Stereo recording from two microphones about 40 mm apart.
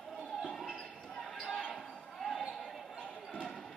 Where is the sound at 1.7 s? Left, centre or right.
Centre.